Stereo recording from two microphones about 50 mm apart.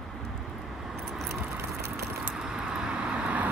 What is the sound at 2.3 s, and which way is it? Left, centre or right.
Vehicle, centre.